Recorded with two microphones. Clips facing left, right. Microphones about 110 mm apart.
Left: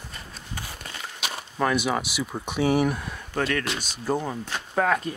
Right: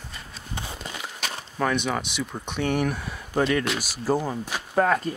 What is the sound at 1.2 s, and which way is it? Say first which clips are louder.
Speech: left 1 dB; 10° left (ahead or behind).